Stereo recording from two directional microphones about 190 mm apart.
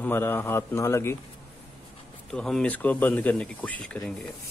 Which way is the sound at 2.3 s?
5° left (ahead or behind).